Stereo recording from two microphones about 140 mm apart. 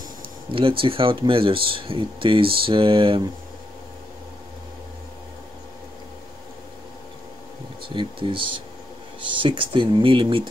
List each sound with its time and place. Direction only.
0.5 s speech: 40° right (ahead or behind)
7.9 s speech: 35° right (ahead or behind)